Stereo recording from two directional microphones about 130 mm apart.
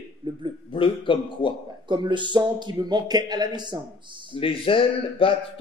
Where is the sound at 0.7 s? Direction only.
40° left (ahead or behind).